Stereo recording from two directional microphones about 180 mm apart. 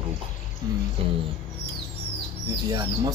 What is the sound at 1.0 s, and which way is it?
Speech, 30° right (ahead or behind).